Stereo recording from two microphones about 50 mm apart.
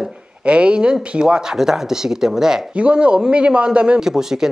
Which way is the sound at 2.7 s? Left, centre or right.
Right.